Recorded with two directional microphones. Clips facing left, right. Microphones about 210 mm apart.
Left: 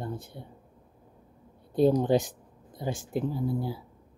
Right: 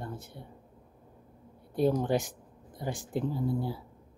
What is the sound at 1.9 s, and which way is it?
Speech, 15° left (ahead or behind).